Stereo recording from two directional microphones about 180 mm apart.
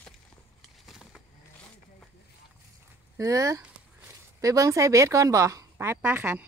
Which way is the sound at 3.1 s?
20° right (ahead or behind).